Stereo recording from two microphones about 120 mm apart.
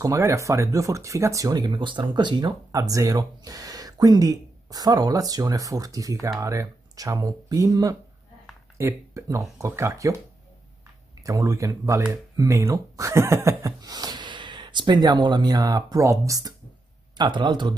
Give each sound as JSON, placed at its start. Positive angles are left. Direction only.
{"t": 0.0, "sound": "speech", "side_deg": -25}
{"t": 11.2, "sound": "speech", "side_deg": -30}